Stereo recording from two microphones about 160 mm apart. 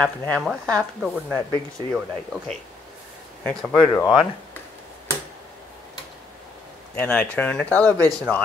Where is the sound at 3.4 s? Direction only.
Centre (ahead or behind).